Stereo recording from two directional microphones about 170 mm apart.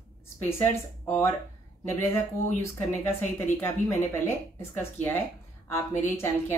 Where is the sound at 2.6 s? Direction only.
15° left (ahead or behind).